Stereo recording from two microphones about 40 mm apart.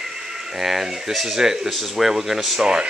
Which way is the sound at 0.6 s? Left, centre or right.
Centre.